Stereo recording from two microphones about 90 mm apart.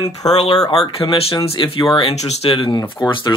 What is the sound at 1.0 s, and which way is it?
Speech, 70° left (ahead or behind).